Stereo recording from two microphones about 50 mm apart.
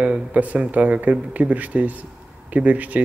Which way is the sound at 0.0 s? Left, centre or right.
Right.